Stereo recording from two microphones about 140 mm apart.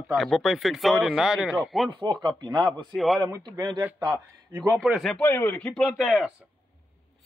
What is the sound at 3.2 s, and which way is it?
Speech, 20° right (ahead or behind).